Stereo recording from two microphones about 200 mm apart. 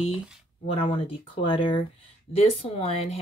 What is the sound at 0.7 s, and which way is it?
Speech, 25° left (ahead or behind).